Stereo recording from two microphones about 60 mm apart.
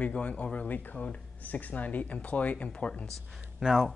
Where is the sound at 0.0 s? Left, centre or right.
Left.